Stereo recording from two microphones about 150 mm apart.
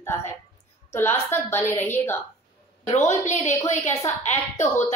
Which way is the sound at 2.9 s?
50° left (ahead or behind).